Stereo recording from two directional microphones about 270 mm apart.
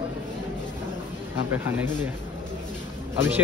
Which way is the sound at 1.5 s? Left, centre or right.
Centre.